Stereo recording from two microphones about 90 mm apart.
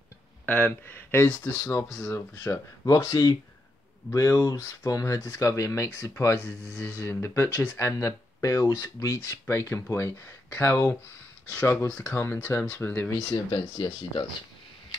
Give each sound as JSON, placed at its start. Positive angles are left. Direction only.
{"t": 0.5, "sound": "speech", "side_deg": 15}
{"t": 1.6, "sound": "speech", "side_deg": 30}
{"t": 13.3, "sound": "speech", "side_deg": 60}